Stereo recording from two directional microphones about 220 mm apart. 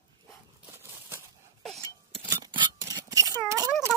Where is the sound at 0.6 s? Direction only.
10° right (ahead or behind).